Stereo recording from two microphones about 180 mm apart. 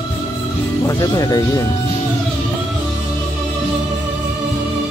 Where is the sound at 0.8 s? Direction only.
20° left (ahead or behind).